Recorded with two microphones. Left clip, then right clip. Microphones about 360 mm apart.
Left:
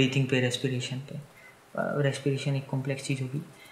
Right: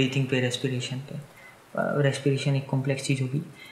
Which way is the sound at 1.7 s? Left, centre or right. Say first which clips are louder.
Right 3 dB; right.